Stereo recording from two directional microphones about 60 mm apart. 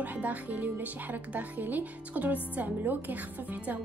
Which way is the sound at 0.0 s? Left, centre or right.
Right.